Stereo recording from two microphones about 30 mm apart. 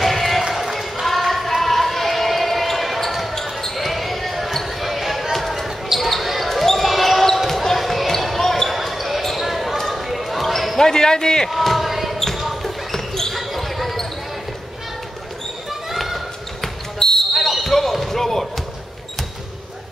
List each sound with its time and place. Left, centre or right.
0.0 s run: centre
0.4 s a sound: centre
3.0 s basketball bounce: centre
8.6 s basketball bounce: centre
10.8 s basketball bounce: left
11.5 s battle cry: centre
12.4 s basketball bounce: centre
12.9 s basketball bounce: centre
13.4 s basketball bounce: centre
15.9 s basketball bounce: centre
17.3 s basketball bounce: centre